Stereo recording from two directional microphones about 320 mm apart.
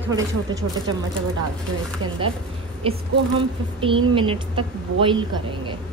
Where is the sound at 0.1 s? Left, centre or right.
Centre.